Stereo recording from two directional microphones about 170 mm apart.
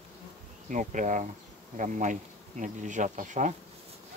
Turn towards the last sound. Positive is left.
turn(degrees=-45)  # may be behind; listen again after turning